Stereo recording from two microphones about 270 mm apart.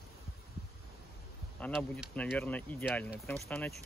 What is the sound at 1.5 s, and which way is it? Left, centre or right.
Speech, centre.